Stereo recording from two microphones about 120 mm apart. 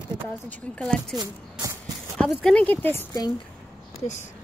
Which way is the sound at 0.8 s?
5° left (ahead or behind).